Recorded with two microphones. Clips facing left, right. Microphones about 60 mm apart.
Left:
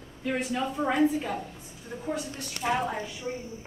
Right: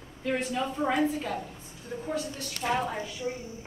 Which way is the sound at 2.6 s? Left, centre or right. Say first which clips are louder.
Left 1 dB; centre.